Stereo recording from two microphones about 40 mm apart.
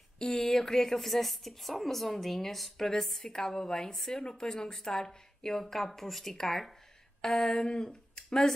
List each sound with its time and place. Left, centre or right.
0.2 s a woman's voice: centre
7.2 s a sound: centre
7.5 s speech: left